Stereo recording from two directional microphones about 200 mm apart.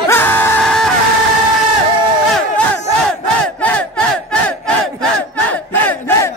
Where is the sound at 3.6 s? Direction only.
5° left (ahead or behind).